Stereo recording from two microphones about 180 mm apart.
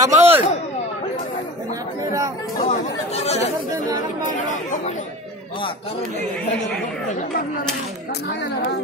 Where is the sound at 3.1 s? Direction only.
35° left (ahead or behind).